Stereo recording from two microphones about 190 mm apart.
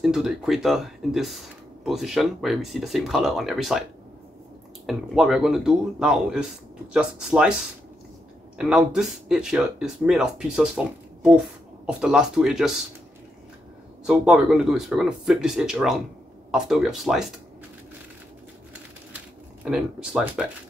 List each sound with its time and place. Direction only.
0.0 s speech: 5° right (ahead or behind)
4.8 s speech: centre (ahead or behind)
8.5 s speech: 5° right (ahead or behind)
14.0 s speech: 5° right (ahead or behind)
19.1 s a sound: 5° right (ahead or behind)